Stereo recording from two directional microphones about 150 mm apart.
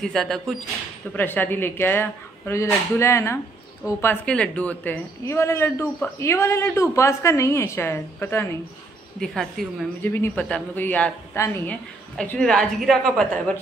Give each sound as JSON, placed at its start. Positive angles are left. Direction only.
{"t": 0.0, "sound": "a woman's voice", "side_deg": 5}
{"t": 1.1, "sound": "a woman's voice", "side_deg": 10}
{"t": 9.2, "sound": "a woman's voice", "side_deg": 0}
{"t": 10.0, "sound": "a woman's voice", "side_deg": 15}